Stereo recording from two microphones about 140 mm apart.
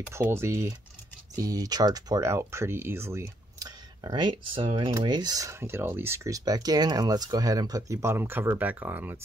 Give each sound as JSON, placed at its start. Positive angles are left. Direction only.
{"t": 0.1, "sound": "speech", "side_deg": -15}